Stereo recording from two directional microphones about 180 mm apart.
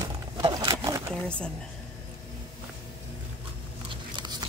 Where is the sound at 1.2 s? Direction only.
5° left (ahead or behind).